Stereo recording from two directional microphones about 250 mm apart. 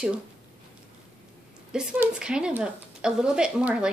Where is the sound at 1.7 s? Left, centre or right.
Centre.